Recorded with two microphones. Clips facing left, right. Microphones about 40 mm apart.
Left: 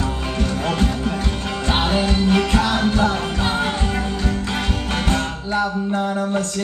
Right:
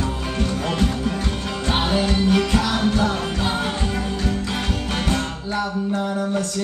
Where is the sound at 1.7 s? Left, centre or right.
Left.